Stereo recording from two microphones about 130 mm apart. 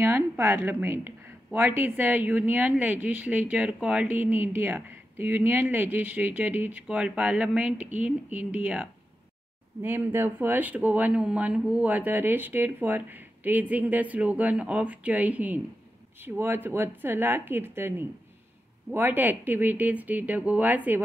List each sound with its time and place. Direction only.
0.0 s a woman's voice: 20° right (ahead or behind)